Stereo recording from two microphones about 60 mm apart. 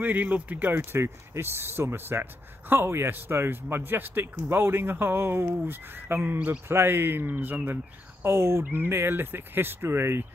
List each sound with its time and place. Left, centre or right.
0.0 s speech: right
0.7 s speech: right
6.7 s speech: right